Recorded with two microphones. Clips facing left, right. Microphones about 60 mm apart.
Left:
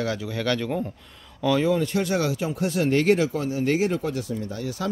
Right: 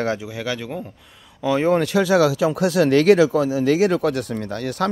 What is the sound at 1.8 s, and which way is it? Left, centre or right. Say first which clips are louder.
Speech: right 7 dB; right.